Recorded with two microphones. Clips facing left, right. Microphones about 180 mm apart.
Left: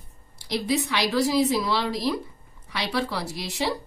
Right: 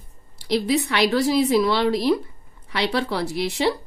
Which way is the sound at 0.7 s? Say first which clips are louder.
Right 3 dB; 60° right (ahead or behind).